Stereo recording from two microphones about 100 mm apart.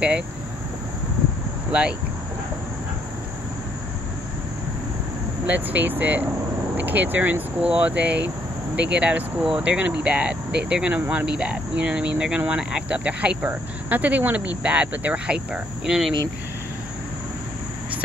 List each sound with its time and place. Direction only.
1.7 s cricket: 10° right (ahead or behind)
5.5 s cricket: 15° right (ahead or behind)